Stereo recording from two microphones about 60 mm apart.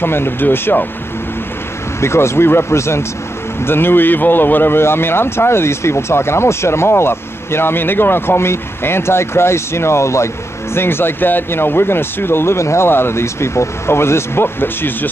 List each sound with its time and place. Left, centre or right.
0.0 s speech: left
2.0 s speech: left
3.6 s speech: left